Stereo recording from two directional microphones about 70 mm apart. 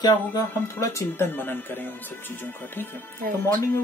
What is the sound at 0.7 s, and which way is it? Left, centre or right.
Speech, left.